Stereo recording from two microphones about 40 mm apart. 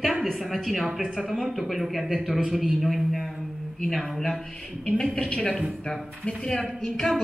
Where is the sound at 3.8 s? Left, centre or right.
Centre.